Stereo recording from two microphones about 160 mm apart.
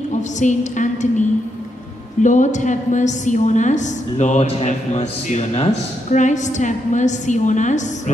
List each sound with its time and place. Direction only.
0.4 s a woman's voice: 50° left (ahead or behind)
2.2 s a woman's voice: 50° left (ahead or behind)